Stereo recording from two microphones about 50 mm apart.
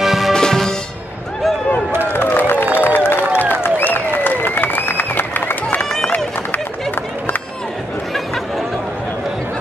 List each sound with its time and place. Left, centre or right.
0.0 s music: centre
0.3 s music: centre
2.1 s a sound: left
3.6 s applause: left